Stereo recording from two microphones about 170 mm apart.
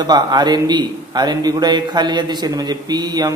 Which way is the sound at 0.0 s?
25° right (ahead or behind).